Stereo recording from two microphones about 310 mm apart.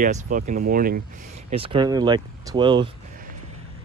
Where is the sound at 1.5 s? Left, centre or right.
Centre.